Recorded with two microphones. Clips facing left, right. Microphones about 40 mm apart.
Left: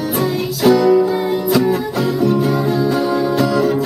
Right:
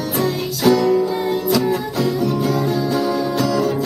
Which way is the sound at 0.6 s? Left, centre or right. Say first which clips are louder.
Left 4 dB; centre.